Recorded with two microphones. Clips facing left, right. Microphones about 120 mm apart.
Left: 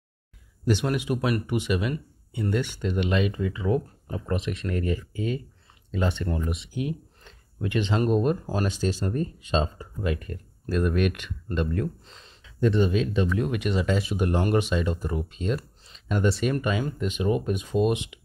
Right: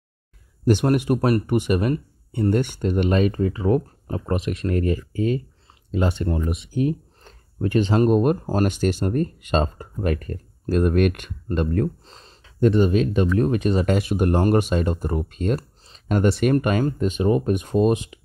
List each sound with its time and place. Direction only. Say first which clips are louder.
0.7 s speech: right 6 dB; 50° right (ahead or behind)
13.8 s speech: right 5 dB; 55° right (ahead or behind); by 18.2 s 40° right (ahead or behind)